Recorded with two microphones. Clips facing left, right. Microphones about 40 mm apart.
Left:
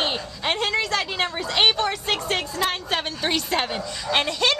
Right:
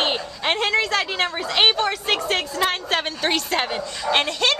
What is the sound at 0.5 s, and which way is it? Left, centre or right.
Speech, centre.